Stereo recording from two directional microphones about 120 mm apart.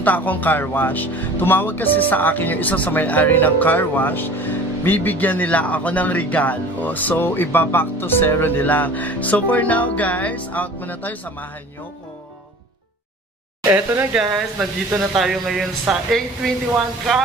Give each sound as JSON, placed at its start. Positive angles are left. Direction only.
{"t": 0.0, "sound": "speech", "side_deg": 15}
{"t": 13.7, "sound": "speech", "side_deg": -20}
{"t": 14.1, "sound": "speech", "side_deg": -5}